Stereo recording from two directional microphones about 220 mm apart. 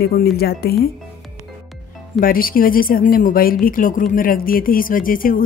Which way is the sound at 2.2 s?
40° left (ahead or behind).